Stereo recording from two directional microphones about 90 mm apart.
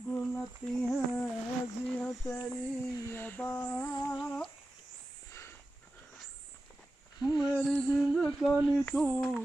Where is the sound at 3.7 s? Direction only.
35° left (ahead or behind).